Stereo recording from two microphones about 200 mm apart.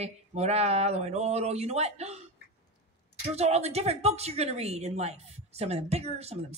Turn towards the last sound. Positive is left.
turn(degrees=-30)  # may be behind; listen again after turning